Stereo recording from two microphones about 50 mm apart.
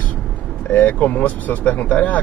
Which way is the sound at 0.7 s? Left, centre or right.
Left.